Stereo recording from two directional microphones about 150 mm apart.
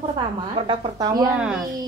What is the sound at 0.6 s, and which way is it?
Speech, 35° right (ahead or behind).